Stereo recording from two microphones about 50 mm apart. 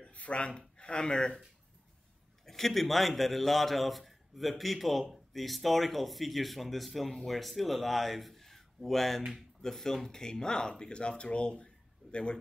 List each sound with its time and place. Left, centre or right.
0.1 s speech: left
2.4 s a man's voice: centre